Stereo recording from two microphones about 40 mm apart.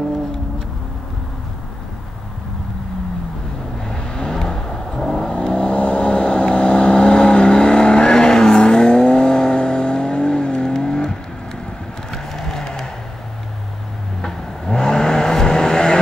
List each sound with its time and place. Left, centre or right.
3.8 s vehicle: centre
5.8 s vehicle: left
12.1 s a sound: centre
14.2 s vehicle: centre